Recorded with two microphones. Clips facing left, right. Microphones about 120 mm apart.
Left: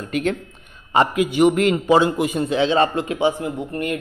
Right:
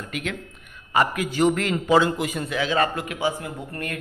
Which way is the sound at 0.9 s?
20° left (ahead or behind).